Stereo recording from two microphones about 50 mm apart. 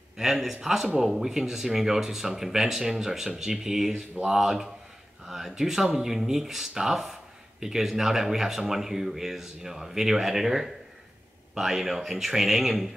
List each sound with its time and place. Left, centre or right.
0.2 s speech: centre
5.2 s a sound: centre
5.6 s speech: centre